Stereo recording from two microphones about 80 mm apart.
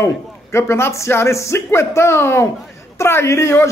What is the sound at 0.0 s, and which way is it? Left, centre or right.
A man's voice, left.